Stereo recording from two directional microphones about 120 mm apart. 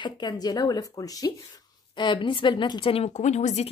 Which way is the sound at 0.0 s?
40° left (ahead or behind).